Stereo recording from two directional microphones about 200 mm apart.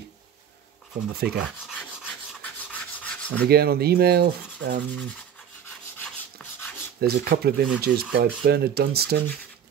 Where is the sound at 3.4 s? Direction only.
50° right (ahead or behind).